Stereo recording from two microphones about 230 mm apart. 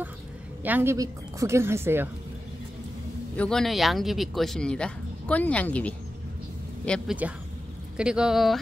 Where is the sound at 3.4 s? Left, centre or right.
Centre.